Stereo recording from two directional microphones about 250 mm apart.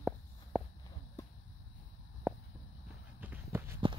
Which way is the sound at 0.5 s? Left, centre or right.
Centre.